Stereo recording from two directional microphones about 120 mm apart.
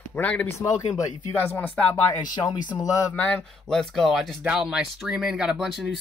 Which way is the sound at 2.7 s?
30° left (ahead or behind).